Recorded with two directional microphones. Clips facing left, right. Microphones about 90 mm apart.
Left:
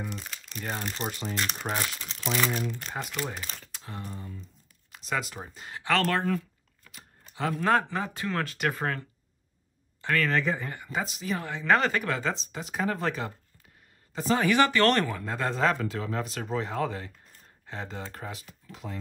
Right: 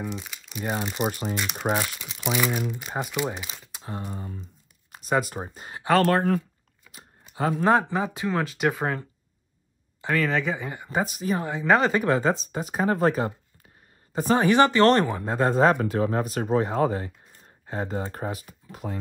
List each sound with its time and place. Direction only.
0.0 s speech: centre (ahead or behind)
3.8 s speech: 35° right (ahead or behind)
6.8 s typing: 5° right (ahead or behind)
7.6 s speech: 15° right (ahead or behind)
10.0 s speech: 15° right (ahead or behind)
11.1 s speech: 50° right (ahead or behind)
11.3 s speech: 20° right (ahead or behind); by 13.3 s 40° right (ahead or behind)
14.3 s speech: 30° right (ahead or behind)
15.8 s speech: 40° right (ahead or behind)
18.7 s speech: 50° right (ahead or behind)